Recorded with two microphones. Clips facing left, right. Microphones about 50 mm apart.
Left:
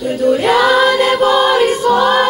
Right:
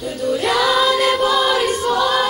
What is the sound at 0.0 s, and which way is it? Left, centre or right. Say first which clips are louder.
Female singing: left 7 dB; left.